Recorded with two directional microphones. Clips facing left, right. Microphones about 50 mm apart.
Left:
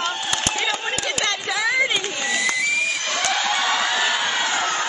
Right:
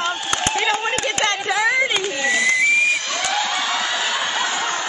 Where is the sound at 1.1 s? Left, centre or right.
Right.